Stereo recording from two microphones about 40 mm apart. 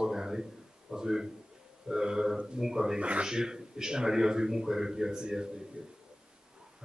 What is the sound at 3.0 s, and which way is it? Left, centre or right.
Speech, right.